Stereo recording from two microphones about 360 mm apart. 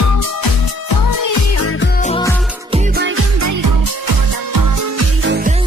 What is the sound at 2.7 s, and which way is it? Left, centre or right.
Music, right.